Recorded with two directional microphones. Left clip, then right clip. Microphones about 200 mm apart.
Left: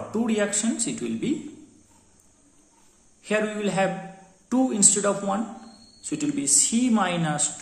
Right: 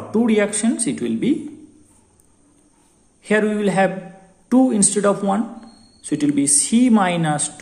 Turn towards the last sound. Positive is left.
turn(degrees=-30)  # may be behind; listen again after turning